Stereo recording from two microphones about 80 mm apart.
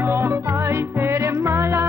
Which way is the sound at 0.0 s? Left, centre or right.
Right.